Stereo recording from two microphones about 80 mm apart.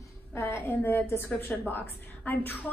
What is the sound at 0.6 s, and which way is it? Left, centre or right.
A woman's voice, left.